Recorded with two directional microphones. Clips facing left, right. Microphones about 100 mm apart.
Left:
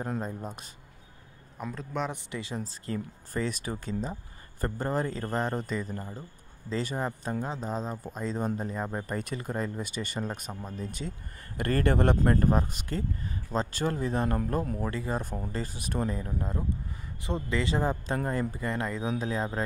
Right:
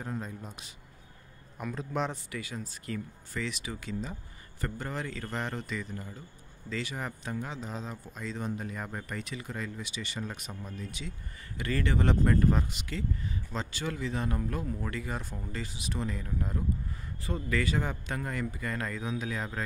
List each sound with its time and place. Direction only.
0.0 s a man's voice: 40° left (ahead or behind)
1.8 s speech: centre (ahead or behind)
2.3 s a man's voice: 30° left (ahead or behind)
9.0 s speech: 45° left (ahead or behind)
14.9 s a man's voice: 30° left (ahead or behind)
15.5 s speech: 45° left (ahead or behind)
16.2 s a man's voice: 25° left (ahead or behind)